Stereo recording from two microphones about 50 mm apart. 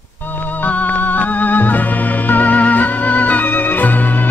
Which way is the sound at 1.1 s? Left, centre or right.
Left.